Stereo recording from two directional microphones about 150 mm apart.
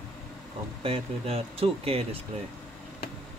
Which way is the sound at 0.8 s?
40° right (ahead or behind).